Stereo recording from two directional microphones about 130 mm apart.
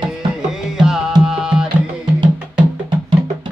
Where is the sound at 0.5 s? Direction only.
5° right (ahead or behind).